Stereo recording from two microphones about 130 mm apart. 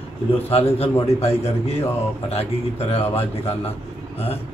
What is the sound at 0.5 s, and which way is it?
A man's voice, 50° left (ahead or behind).